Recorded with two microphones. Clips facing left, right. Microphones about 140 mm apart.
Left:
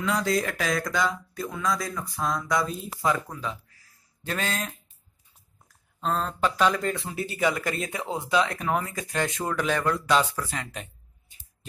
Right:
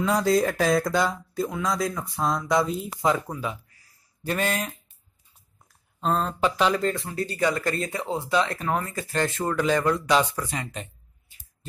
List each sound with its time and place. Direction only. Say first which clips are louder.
0.0 s speech: right 4 dB; 35° right (ahead or behind)
3.3 s speech: right 3 dB; 10° right (ahead or behind)
6.0 s speech: right 2 dB; 10° right (ahead or behind)
7.1 s speech: right 2 dB; 15° left (ahead or behind)
7.3 s speech: right 1 dB; 5° left (ahead or behind)
9.4 s speech: right 5 dB; 5° right (ahead or behind)